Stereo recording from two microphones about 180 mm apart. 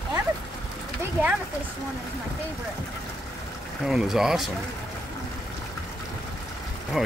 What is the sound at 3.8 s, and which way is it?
Speech, centre (ahead or behind).